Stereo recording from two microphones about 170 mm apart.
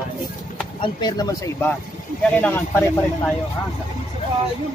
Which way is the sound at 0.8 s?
25° left (ahead or behind).